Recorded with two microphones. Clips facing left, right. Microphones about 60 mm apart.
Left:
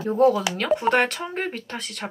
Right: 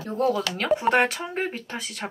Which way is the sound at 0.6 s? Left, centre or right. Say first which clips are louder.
Right 1 dB; centre.